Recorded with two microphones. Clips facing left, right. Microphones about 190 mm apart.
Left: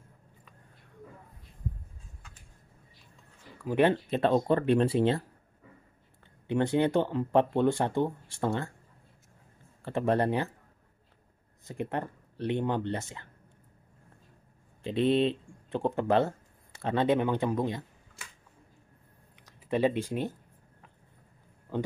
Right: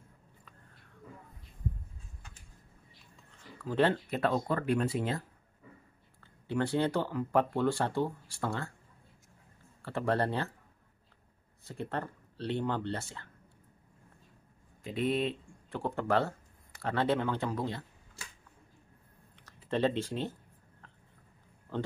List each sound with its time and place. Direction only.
3.5 s speech: 15° left (ahead or behind)
6.2 s speech: 20° left (ahead or behind)
9.8 s speech: 20° left (ahead or behind)
11.6 s speech: 15° left (ahead or behind)
14.8 s speech: 30° left (ahead or behind)
19.4 s speech: 10° left (ahead or behind)
21.7 s speech: 15° left (ahead or behind)